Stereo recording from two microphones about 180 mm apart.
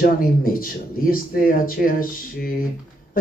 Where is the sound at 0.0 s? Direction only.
50° left (ahead or behind).